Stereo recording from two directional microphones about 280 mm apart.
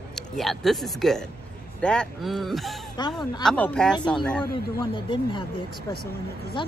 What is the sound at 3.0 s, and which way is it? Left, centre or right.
Speech, centre.